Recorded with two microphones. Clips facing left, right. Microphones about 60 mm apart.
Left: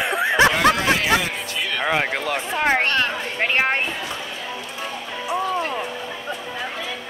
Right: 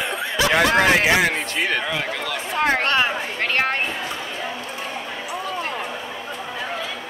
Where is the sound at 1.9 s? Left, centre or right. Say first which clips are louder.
Left 4 dB; left.